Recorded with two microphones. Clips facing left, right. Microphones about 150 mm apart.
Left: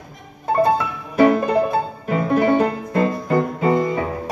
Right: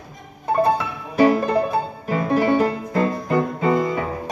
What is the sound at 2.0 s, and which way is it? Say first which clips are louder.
Music: left 2 dB; 20° left (ahead or behind).